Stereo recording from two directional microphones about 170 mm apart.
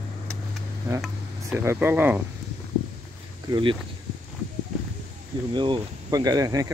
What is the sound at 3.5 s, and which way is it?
Speech, 30° right (ahead or behind).